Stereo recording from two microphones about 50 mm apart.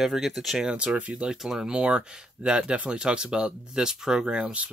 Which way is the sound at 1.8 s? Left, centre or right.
Right.